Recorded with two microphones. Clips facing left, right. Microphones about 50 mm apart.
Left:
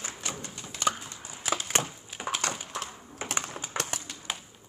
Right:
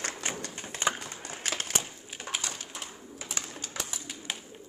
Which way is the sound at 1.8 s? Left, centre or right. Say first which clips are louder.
Left 7 dB; left.